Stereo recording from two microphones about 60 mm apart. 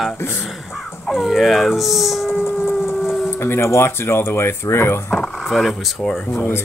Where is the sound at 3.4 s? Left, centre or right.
Left.